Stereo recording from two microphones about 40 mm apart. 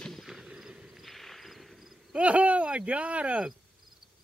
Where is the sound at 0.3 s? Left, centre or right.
Centre.